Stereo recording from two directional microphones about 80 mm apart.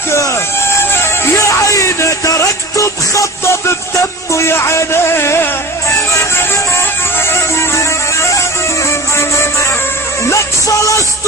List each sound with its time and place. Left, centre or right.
0.1 s a sound: left
0.9 s music: left
4.3 s a man's voice: left
7.2 s music: left